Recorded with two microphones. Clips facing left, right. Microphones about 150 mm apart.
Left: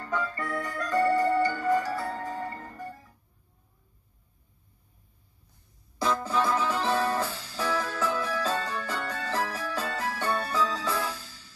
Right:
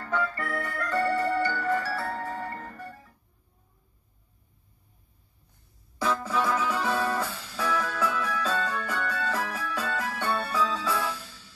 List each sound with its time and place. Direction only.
0.0 s music: 20° left (ahead or behind)
5.9 s music: 30° left (ahead or behind)